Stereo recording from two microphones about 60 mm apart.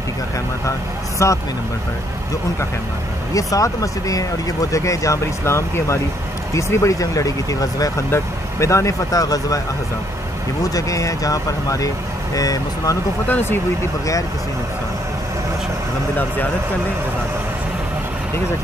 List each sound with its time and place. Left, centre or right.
1.2 s speech: left
3.3 s speech: left
6.7 s speech: left
8.1 s speech: left
10.6 s speech: left
12.4 s speech: left
13.3 s speech: left